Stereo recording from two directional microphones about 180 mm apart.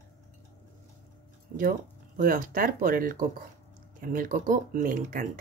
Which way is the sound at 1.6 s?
50° right (ahead or behind).